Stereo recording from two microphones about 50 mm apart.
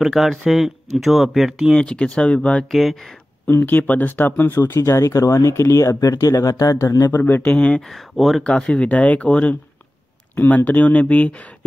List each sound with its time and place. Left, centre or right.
0.0 s speech: centre
1.8 s speech: centre
2.7 s speech: centre
3.4 s speech: left
4.4 s speech: left
5.5 s speech: left
6.8 s speech: left
7.2 s speech: left
7.4 s speech: left
7.9 s speech: centre
8.5 s speech: left
10.3 s speech: left